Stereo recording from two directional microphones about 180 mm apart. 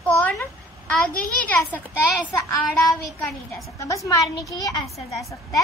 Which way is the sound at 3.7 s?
20° left (ahead or behind).